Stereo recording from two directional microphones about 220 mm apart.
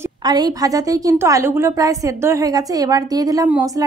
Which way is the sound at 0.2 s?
20° right (ahead or behind).